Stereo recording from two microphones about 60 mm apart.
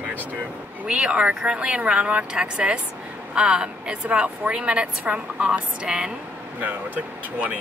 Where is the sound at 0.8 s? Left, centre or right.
Centre.